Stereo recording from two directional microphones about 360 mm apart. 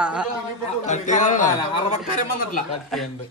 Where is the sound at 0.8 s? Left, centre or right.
Centre.